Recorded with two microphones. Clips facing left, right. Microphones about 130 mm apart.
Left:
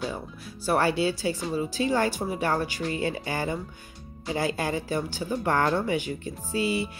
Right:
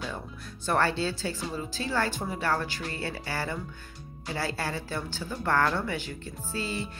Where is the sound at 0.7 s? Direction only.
10° left (ahead or behind).